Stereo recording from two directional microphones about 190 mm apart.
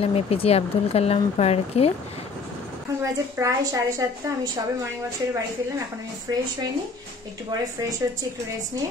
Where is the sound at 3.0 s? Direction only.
15° right (ahead or behind).